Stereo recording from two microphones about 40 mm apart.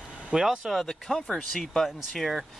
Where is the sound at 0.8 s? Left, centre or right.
Centre.